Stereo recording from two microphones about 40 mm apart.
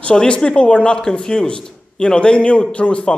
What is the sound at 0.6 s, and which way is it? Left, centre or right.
A man's voice, left.